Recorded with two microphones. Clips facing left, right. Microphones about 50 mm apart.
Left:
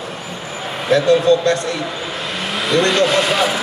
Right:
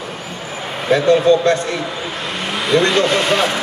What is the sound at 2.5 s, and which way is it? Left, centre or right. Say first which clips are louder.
Speech: right 1 dB; centre.